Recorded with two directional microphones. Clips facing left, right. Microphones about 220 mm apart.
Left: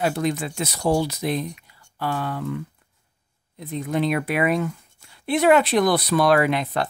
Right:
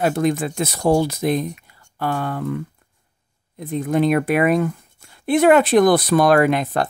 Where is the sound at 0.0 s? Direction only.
50° right (ahead or behind).